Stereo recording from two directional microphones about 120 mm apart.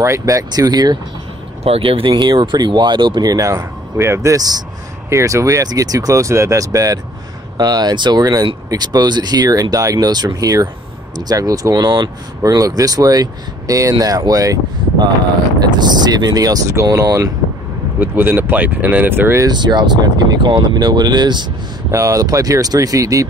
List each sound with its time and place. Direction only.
0.0 s speech: 25° right (ahead or behind)
1.6 s speech: 50° right (ahead or behind); by 17.3 s 30° right (ahead or behind)
17.9 s speech: 15° right (ahead or behind)
19.4 s speech: 35° right (ahead or behind)